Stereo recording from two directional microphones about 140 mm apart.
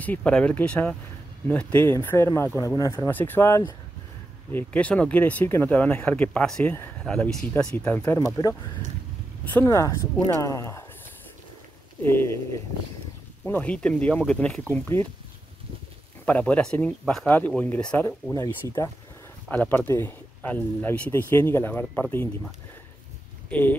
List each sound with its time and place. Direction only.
0.0 s speech: 10° left (ahead or behind)
6.7 s speech: 15° left (ahead or behind)
7.1 s speech: 5° left (ahead or behind)
9.4 s speech: 15° left (ahead or behind)
12.0 s speech: 15° left (ahead or behind)
13.4 s speech: 10° left (ahead or behind)
16.3 s speech: 10° left (ahead or behind)
18.3 s speech: 20° left (ahead or behind)
19.5 s speech: 10° left (ahead or behind)